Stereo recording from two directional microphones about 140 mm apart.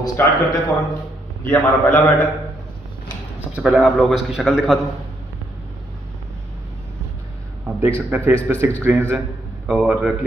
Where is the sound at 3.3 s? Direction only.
10° right (ahead or behind).